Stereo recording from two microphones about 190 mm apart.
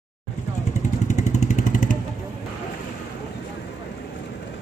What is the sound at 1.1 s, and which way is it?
Vehicle, 40° left (ahead or behind).